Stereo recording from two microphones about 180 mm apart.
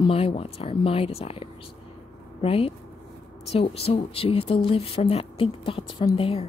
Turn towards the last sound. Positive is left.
turn(degrees=35)  # may be behind; listen again after turning